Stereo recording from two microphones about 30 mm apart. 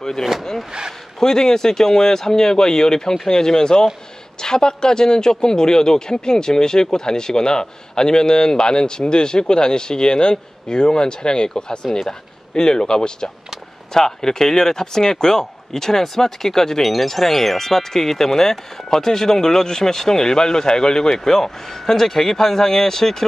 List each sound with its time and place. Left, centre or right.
0.2 s speech: centre
1.2 s a man's voice: centre
17.6 s speech: centre